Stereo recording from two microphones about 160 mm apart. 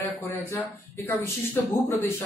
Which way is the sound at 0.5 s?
15° left (ahead or behind).